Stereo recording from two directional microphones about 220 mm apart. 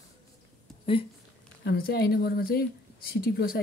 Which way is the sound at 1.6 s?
45° left (ahead or behind).